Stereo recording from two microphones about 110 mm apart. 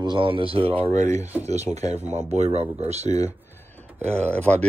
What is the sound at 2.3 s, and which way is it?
Speech, 80° right.